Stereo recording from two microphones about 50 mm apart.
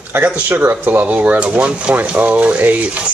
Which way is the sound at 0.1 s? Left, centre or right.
Right.